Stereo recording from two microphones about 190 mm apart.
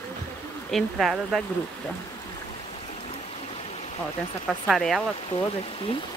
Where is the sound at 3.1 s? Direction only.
30° left (ahead or behind).